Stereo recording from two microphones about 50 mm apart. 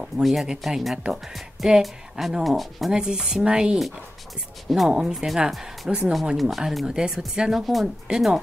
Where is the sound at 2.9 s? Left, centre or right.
Centre.